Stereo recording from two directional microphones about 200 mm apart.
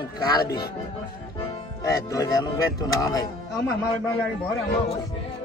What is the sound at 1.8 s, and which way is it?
A man's voice, 15° left (ahead or behind).